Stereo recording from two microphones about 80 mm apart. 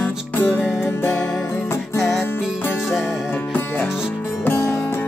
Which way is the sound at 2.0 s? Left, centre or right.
Centre.